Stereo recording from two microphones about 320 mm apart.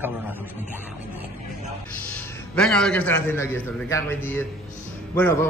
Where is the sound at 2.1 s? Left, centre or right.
Centre.